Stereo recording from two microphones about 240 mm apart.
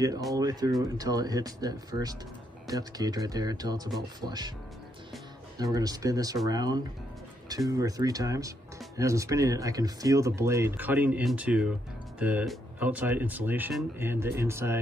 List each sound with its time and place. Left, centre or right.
0.3 s speech: centre
5.6 s speech: centre